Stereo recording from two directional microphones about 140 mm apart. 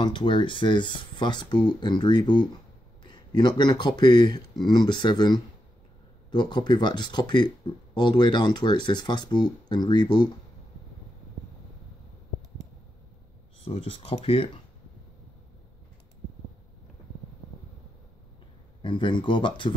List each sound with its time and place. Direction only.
0.0 s speech: 35° left (ahead or behind)
13.7 s speech: 40° left (ahead or behind)
18.8 s speech: 35° left (ahead or behind)